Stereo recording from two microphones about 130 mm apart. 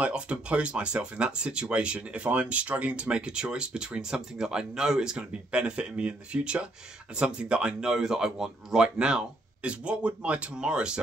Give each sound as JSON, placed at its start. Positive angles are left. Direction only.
{"t": 0.0, "sound": "speech", "side_deg": -10}